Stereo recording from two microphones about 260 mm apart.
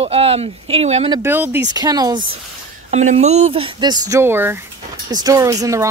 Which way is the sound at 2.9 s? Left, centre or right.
Right.